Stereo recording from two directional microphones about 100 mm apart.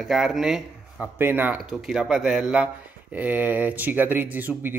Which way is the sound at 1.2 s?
20° right (ahead or behind).